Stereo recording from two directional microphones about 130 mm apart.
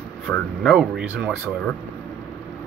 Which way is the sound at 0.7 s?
5° right (ahead or behind).